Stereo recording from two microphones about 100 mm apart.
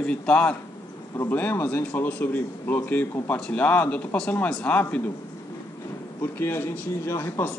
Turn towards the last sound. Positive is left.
turn(degrees=25)  # may be behind; listen again after turning